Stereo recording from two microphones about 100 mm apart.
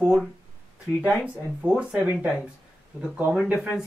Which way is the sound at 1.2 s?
15° right (ahead or behind).